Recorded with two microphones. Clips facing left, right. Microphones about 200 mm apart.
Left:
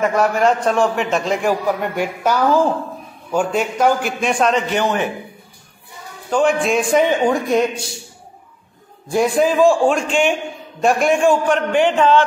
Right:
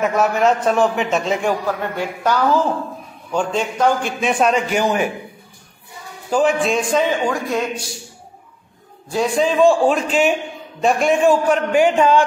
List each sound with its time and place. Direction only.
0.0 s a man's voice: centre (ahead or behind)
1.7 s a man's voice: 15° left (ahead or behind)
4.3 s a man's voice: 10° right (ahead or behind)
6.3 s a man's voice: centre (ahead or behind)
6.9 s a man's voice: 15° left (ahead or behind)
9.1 s a man's voice: 10° left (ahead or behind); by 12.2 s 10° right (ahead or behind)